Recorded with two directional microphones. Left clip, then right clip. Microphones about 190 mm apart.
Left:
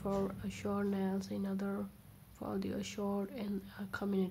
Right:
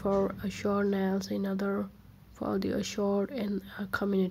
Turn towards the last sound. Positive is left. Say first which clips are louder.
# right 8 dB
turn(degrees=-20)  # may be behind; listen again after turning